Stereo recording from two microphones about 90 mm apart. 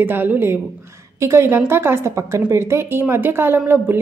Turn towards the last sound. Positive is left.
turn(degrees=-25)  # may be behind; listen again after turning